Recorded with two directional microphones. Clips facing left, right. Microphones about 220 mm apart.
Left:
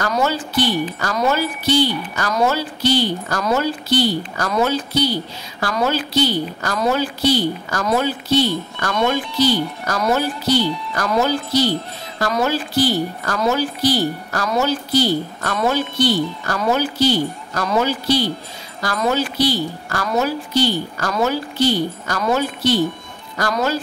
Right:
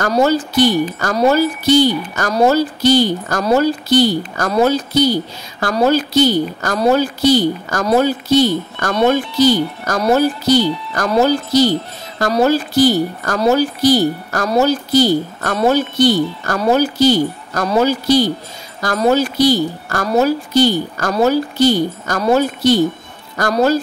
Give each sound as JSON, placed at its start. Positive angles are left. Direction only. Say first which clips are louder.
{"t": 0.1, "sound": "a woman's voice", "louder": "right 6 dB", "side_deg": -40}